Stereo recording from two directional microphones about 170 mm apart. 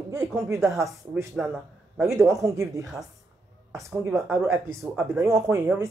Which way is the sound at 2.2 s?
20° right (ahead or behind).